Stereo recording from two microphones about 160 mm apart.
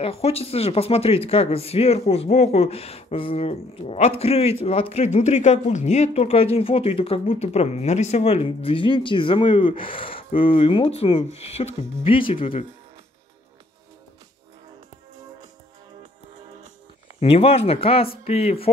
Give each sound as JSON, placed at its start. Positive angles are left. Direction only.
{"t": 0.0, "sound": "speech", "side_deg": 40}
{"t": 17.2, "sound": "speech", "side_deg": 40}